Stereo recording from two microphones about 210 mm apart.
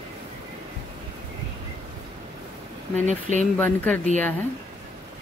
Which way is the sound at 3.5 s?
5° left (ahead or behind).